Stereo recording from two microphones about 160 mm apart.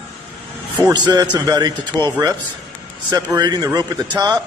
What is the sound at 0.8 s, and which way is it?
A man's voice, 25° right (ahead or behind).